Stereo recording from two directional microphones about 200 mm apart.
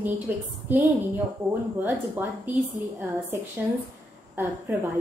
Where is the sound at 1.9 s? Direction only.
10° right (ahead or behind).